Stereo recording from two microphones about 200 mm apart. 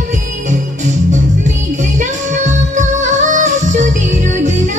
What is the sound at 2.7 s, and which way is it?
Music, 35° right (ahead or behind).